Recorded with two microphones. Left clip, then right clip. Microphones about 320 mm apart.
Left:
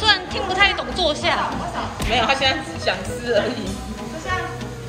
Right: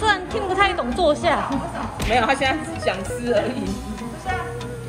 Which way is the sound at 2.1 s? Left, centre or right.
Right.